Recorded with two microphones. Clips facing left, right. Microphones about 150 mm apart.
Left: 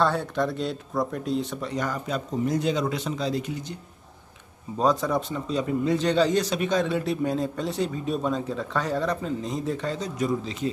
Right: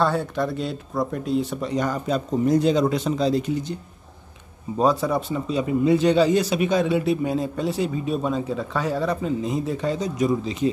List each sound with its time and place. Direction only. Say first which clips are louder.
0.0 s speech: right 2 dB; 5° right (ahead or behind)
1.6 s a man's voice: right 5 dB; 20° right (ahead or behind)
4.7 s a man's voice: right 3 dB; 10° right (ahead or behind)